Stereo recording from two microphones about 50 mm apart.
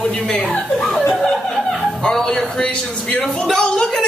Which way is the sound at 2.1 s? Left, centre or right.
Centre.